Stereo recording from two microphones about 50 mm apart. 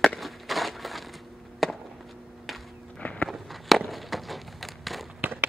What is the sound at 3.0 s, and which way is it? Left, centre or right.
Walk, left.